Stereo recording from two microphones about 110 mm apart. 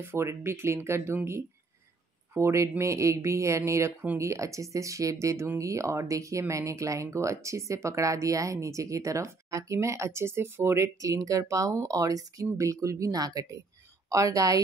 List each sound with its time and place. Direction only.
0.0 s a woman's voice: 25° right (ahead or behind)